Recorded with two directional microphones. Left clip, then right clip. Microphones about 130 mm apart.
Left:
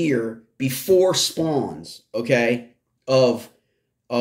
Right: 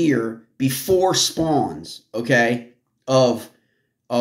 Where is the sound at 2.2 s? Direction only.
50° right (ahead or behind).